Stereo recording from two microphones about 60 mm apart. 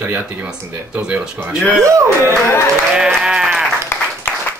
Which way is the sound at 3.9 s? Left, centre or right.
Left.